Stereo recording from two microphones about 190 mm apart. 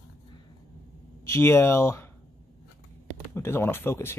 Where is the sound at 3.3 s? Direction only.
10° left (ahead or behind).